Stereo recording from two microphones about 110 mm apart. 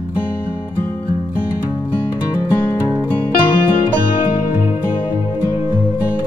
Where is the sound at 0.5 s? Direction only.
20° left (ahead or behind).